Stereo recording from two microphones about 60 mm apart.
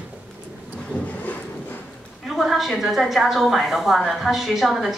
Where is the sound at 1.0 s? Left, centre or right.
Left.